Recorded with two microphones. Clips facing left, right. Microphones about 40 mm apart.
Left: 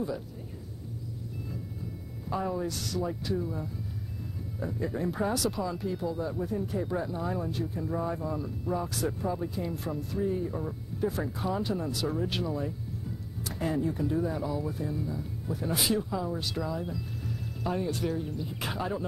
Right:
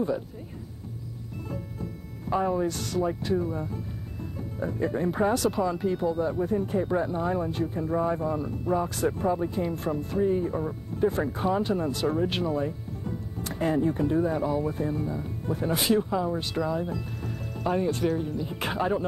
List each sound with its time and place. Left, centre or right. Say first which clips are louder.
2.2 s speech: right 6 dB; right
2.7 s speech: right 5 dB; right
4.6 s speech: right 5 dB; right
11.1 s speech: right 6 dB; right
13.0 s music: right 5 dB; right
13.6 s speech: right 5 dB; right
17.2 s music: right 4 dB; right
18.0 s speech: right 5 dB; right